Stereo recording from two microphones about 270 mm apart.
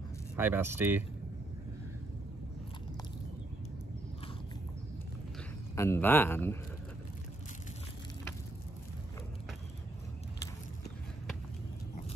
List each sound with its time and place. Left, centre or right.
0.4 s speech: centre
5.8 s speech: centre